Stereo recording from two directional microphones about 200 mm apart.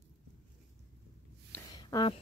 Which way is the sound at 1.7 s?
20° left (ahead or behind).